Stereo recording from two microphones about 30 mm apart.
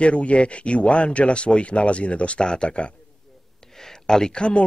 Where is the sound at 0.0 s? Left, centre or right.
Left.